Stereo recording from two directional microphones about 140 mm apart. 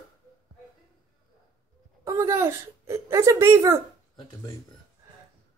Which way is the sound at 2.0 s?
20° right (ahead or behind).